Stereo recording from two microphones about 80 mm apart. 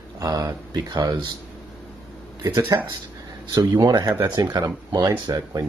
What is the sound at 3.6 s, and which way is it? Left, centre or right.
Speech, right.